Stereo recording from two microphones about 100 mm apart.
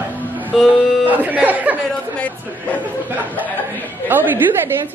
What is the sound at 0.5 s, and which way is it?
Music, 5° right (ahead or behind).